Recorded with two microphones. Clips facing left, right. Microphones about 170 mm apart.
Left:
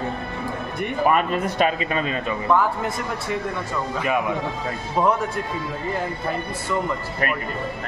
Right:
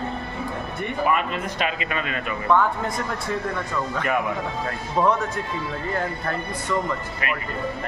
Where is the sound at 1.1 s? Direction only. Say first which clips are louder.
Left 5 dB; 40° left (ahead or behind).